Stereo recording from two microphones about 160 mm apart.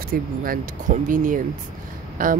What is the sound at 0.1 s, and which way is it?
Speech, 60° right (ahead or behind).